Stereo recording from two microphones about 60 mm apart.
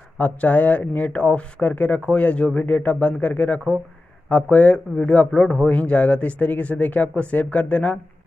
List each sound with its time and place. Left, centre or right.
0.2 s a man's voice: left